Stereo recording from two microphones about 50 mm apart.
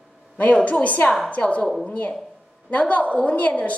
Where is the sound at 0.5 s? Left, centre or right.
Left.